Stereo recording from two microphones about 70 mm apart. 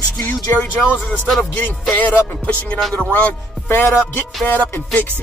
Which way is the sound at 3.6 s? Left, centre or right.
Left.